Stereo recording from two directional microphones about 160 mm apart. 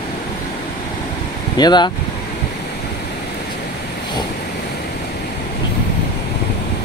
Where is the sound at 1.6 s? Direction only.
25° left (ahead or behind).